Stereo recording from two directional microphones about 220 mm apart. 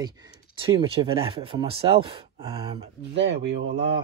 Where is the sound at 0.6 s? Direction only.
25° right (ahead or behind).